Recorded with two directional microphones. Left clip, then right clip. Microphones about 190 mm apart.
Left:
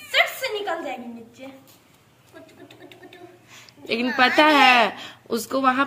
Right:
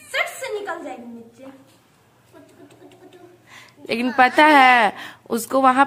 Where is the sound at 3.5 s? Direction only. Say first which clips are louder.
Right 1 dB; 25° right (ahead or behind).